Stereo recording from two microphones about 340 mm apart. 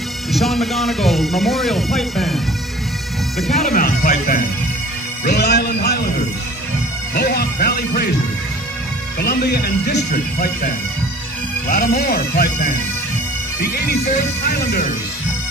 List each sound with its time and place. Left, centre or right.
0.3 s speech: centre
3.7 s speech: left
7.2 s speech: left
9.2 s speech: left
11.7 s speech: left